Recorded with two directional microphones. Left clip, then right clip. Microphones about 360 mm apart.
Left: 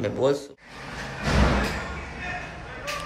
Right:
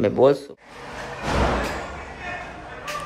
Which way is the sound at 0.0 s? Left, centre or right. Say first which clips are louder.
Right 7 dB; centre.